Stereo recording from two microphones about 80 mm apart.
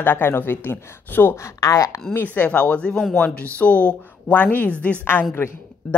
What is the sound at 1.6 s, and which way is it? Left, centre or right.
Speech, left.